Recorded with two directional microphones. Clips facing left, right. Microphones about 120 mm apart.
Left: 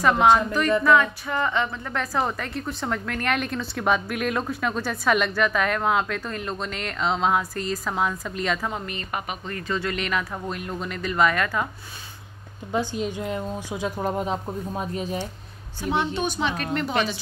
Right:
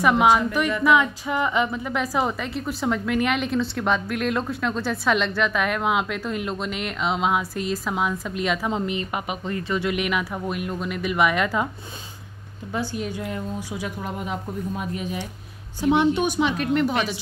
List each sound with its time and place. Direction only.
0.0 s a woman's voice: 10° right (ahead or behind)
8.6 s speech: 20° right (ahead or behind)
12.7 s a woman's voice: 20° left (ahead or behind)
15.8 s speech: 15° right (ahead or behind)